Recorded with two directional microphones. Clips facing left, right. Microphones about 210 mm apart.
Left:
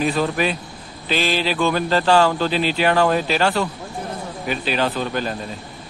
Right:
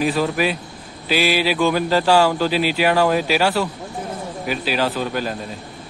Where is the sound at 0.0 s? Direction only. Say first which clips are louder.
Right 1 dB; 5° right (ahead or behind).